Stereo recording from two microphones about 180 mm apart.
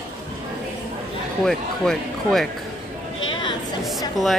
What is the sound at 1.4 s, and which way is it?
Speech, centre (ahead or behind).